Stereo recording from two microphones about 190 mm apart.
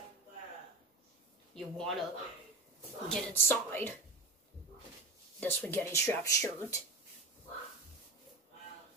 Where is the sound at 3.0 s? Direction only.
5° left (ahead or behind).